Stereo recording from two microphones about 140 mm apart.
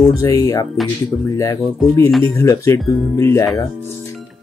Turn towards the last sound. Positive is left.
turn(degrees=25)  # may be behind; listen again after turning